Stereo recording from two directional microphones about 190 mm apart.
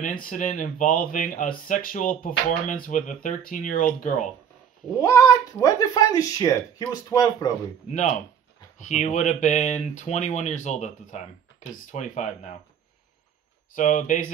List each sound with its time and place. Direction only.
0.0 s speech: 45° left (ahead or behind)
5.0 s speech: 15° left (ahead or behind)
7.9 s speech: 40° left (ahead or behind)
13.7 s speech: 40° left (ahead or behind)